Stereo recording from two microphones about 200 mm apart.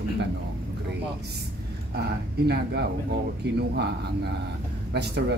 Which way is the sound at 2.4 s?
55° right (ahead or behind).